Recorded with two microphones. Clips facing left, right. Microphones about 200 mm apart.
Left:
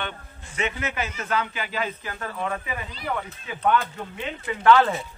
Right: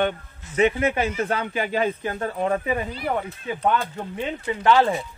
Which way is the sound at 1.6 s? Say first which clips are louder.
Right 6 dB; 45° right (ahead or behind).